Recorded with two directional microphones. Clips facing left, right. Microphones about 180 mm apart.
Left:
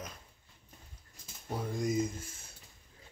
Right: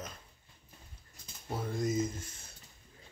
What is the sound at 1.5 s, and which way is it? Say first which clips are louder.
Speech: even; 15° left (ahead or behind).